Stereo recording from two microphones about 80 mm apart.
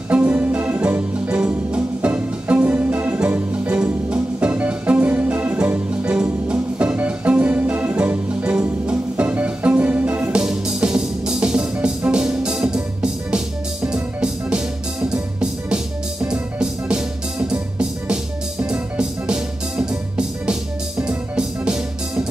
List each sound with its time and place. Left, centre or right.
0.1 s music: centre
15.7 s music: centre